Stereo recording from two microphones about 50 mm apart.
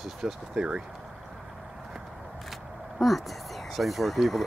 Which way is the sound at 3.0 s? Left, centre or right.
Centre.